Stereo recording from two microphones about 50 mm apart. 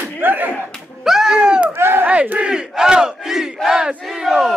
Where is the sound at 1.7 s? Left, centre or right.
Right.